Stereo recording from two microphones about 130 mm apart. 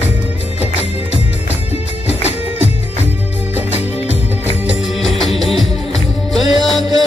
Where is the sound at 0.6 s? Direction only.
55° left (ahead or behind).